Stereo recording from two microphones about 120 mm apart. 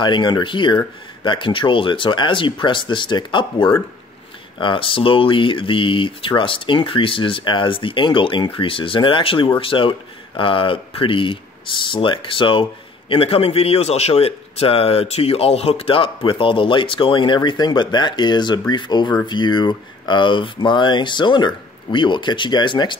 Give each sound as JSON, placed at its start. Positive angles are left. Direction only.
{"t": 0.0, "sound": "speech", "side_deg": 40}